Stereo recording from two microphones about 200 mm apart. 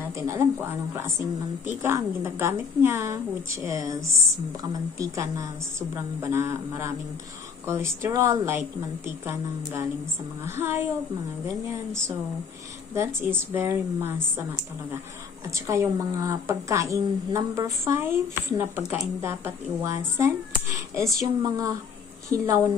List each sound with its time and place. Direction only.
0.2 s a woman's voice: 15° right (ahead or behind)
12.9 s a woman's voice: 10° right (ahead or behind)
15.5 s a woman's voice: 15° right (ahead or behind)